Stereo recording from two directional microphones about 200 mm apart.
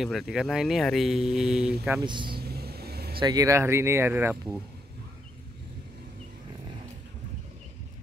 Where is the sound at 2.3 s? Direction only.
50° right (ahead or behind).